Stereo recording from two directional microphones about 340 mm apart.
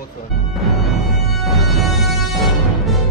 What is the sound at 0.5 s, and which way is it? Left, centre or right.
Music, centre.